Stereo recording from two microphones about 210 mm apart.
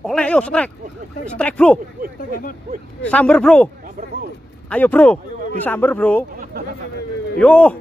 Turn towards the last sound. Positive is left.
turn(degrees=5)  # may be behind; listen again after turning